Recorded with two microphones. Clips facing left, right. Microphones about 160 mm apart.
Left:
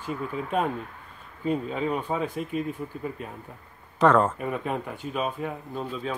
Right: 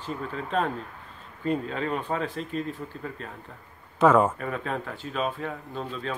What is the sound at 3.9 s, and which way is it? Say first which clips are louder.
Speech: right 1 dB; 5° right (ahead or behind).